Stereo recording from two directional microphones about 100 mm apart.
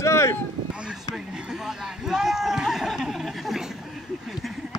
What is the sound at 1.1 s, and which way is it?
Speech, 5° right (ahead or behind).